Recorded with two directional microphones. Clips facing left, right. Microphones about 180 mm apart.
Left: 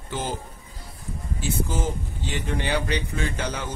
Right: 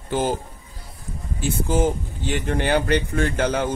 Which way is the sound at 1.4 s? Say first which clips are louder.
Right 7 dB; 55° right (ahead or behind).